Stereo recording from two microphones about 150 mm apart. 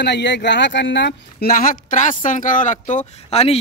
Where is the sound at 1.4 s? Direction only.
70° left (ahead or behind).